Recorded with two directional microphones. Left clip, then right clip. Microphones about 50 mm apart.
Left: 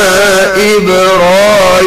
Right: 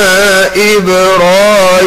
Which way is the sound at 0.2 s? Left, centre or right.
Right.